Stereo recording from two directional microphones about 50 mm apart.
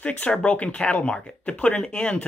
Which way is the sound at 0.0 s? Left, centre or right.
Left.